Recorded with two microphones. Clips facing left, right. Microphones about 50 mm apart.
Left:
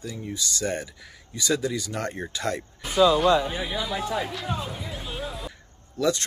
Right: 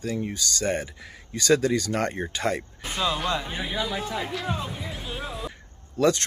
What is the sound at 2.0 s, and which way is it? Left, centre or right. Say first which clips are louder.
Speech: right 2 dB; right.